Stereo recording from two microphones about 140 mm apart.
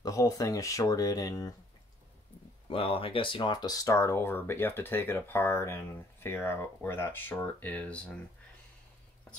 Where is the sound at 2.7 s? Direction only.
40° left (ahead or behind); by 8.1 s 10° left (ahead or behind).